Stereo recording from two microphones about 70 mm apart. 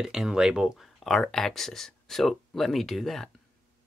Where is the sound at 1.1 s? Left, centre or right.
Centre.